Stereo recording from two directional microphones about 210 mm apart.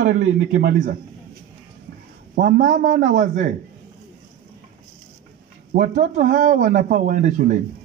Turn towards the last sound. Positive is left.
turn(degrees=-40)  # may be behind; listen again after turning